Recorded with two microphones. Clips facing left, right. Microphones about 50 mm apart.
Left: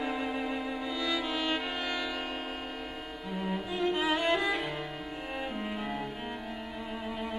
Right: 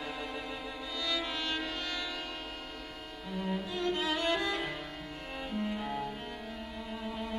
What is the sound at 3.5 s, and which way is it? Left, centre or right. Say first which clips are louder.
Cello: left 2 dB; centre.